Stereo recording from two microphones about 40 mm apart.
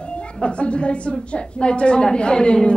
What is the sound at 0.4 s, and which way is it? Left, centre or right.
A woman's voice, left.